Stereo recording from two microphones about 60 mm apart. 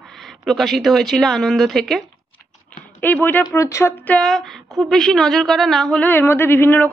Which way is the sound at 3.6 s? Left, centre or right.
Left.